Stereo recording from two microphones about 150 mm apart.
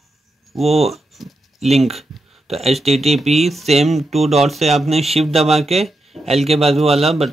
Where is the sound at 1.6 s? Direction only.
45° right (ahead or behind).